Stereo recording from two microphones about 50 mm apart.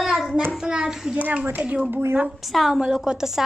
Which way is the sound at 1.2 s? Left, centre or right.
Right.